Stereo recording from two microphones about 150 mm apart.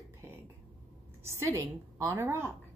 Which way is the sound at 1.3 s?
20° right (ahead or behind).